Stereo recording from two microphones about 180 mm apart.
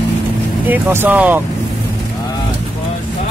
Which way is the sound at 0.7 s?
10° right (ahead or behind).